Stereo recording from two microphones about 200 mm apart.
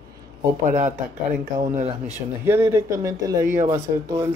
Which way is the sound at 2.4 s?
10° right (ahead or behind).